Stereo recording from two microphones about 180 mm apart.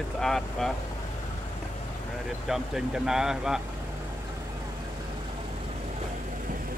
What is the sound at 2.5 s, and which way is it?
Speech, 5° right (ahead or behind).